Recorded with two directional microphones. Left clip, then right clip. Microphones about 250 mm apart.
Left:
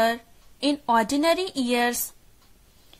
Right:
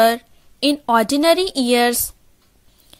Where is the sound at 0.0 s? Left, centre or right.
Right.